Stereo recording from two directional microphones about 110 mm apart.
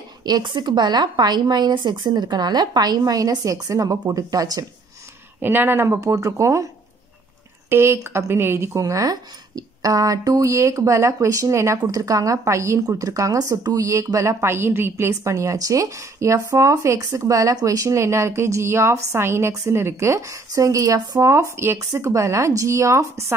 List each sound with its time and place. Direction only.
0.2 s a woman's voice: 40° right (ahead or behind)
5.4 s speech: 20° right (ahead or behind)
7.7 s speech: 20° right (ahead or behind)